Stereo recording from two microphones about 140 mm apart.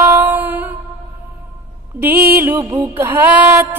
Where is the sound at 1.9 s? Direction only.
15° right (ahead or behind).